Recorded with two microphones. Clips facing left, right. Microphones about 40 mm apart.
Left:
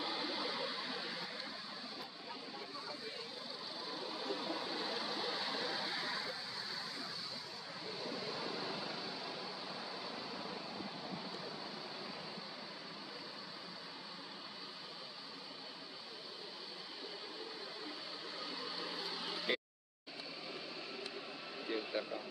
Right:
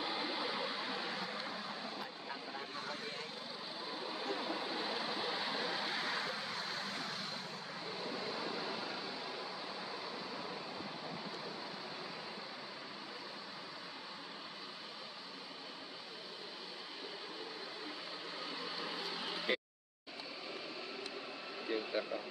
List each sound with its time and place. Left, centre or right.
0.0 s vehicle: centre; by 1.6 s right
4.1 s vehicle: right
5.9 s vehicle: right
8.1 s vehicle: centre
18.8 s vehicle: right
21.6 s vehicle: centre